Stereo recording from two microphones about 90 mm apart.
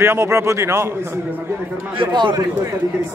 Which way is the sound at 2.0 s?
65° right (ahead or behind).